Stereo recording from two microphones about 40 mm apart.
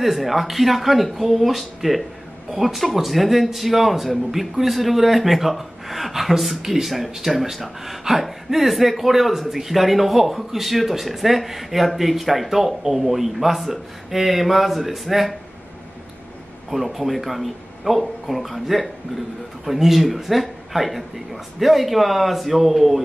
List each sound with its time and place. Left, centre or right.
0.0 s a man's voice: centre
16.7 s a man's voice: centre